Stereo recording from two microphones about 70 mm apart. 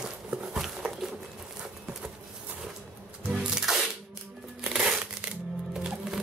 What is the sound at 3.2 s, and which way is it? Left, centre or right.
Music, centre.